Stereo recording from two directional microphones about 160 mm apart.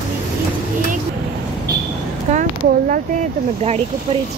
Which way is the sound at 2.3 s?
55° right (ahead or behind).